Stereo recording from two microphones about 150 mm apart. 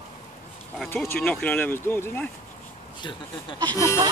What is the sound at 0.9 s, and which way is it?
Speech, 10° left (ahead or behind).